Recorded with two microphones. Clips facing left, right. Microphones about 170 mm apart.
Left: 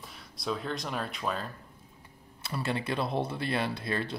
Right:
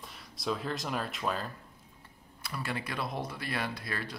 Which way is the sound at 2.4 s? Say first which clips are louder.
Left 4 dB; 25° left (ahead or behind).